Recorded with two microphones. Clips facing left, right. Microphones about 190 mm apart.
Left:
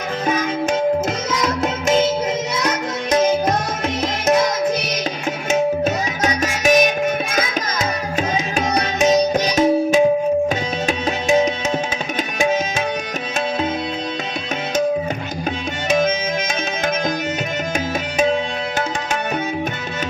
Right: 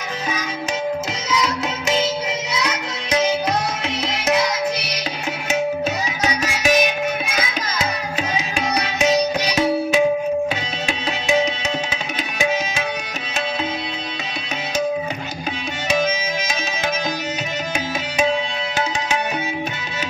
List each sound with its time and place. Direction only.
1.3 s music: 50° left (ahead or behind)
6.2 s music: 45° left (ahead or behind)